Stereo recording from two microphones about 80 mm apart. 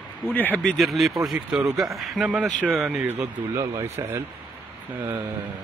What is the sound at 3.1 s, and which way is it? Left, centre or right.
Speech, right.